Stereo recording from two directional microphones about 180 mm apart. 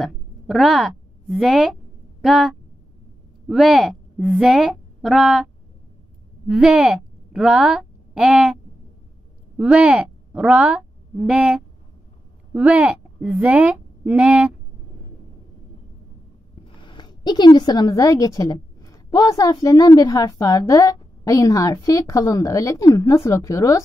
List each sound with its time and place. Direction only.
0.0 s a woman's voice: centre (ahead or behind)
9.6 s a woman's voice: 5° right (ahead or behind)
16.6 s a woman's voice: 25° left (ahead or behind)